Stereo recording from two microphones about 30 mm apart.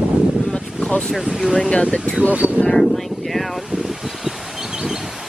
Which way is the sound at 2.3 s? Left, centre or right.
Right.